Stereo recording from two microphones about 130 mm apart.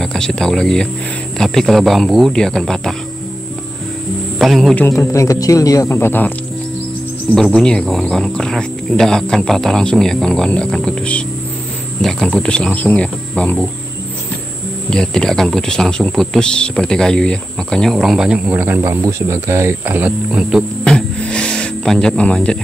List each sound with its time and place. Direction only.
0.0 s speech: 5° left (ahead or behind)
4.4 s a man's voice: centre (ahead or behind)
4.7 s speech: 20° left (ahead or behind)
7.3 s speech: 5° left (ahead or behind)
14.9 s speech: 5° left (ahead or behind)
18.5 s speech: 15° right (ahead or behind)
20.8 s music: 5° left (ahead or behind)